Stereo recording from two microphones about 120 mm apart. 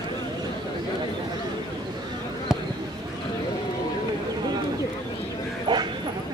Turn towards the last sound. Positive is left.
turn(degrees=-40)  # may be behind; listen again after turning